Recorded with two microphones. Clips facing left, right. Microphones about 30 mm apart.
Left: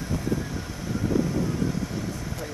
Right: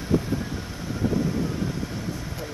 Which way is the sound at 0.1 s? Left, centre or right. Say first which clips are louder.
Right 8 dB; right.